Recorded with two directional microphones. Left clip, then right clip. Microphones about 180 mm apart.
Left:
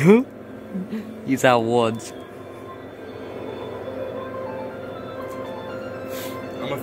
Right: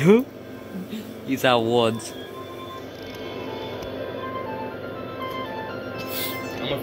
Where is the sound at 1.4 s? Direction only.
15° left (ahead or behind).